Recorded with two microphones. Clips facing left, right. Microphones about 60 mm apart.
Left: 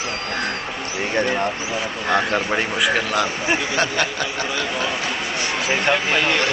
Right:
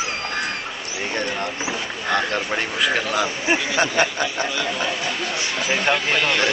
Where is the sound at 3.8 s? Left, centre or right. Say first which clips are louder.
Right 1 dB; centre.